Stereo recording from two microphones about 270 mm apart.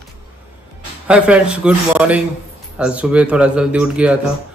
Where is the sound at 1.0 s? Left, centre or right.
Centre.